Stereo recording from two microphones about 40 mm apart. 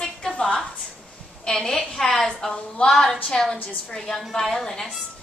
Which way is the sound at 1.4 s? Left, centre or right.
Centre.